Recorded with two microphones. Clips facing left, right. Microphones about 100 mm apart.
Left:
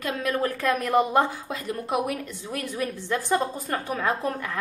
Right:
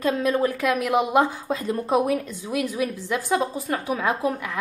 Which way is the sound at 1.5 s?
25° right (ahead or behind).